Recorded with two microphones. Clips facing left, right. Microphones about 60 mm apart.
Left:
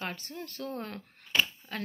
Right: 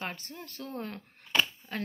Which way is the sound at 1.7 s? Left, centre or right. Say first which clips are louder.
Right 1 dB; right.